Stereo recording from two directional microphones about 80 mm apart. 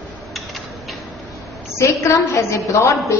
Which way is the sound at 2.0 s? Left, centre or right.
Left.